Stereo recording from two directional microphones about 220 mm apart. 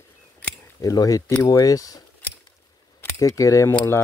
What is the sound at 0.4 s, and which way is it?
Camera, 15° left (ahead or behind).